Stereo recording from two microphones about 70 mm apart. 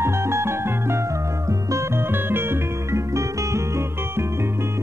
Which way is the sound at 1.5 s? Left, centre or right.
Right.